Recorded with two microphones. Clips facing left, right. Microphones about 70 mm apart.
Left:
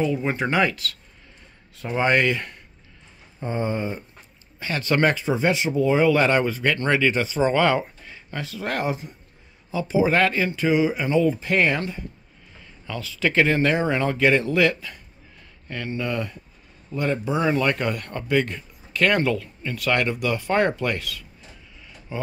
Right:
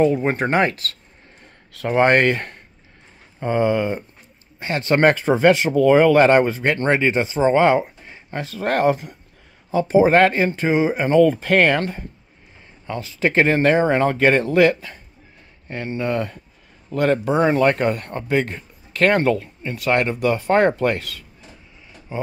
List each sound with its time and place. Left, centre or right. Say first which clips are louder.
0.0 s speech: right 6 dB; right
1.7 s speech: right 8 dB; right
2.0 s speech: right 1 dB; right
3.3 s speech: right 7 dB; right
4.6 s speech: right 4 dB; right
5.0 s speech: right 8 dB; right
9.7 s speech: right 6 dB; right
11.1 s speech: right 6 dB; right
12.8 s speech: right 3 dB; right
16.9 s speech: right 6 dB; right
17.5 s speech: right 4 dB; right